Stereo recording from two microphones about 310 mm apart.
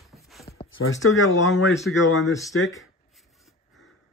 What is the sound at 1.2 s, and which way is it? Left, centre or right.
Speech, left.